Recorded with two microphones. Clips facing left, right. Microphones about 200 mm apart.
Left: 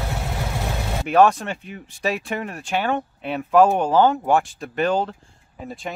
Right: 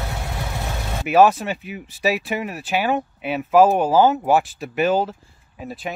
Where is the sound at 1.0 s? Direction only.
5° right (ahead or behind).